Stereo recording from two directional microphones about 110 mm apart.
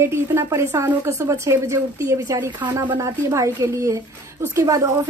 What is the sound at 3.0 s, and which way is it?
A woman's voice, 30° right (ahead or behind).